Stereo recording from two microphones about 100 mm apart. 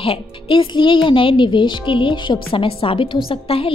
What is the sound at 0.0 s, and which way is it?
A child's voice, 60° left (ahead or behind).